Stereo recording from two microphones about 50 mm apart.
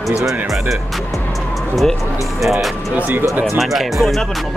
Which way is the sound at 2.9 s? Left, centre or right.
Right.